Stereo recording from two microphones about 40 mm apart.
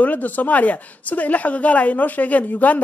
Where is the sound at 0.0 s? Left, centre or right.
Left.